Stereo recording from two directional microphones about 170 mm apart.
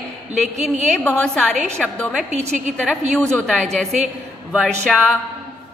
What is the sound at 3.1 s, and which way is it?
A woman's voice, 5° left (ahead or behind).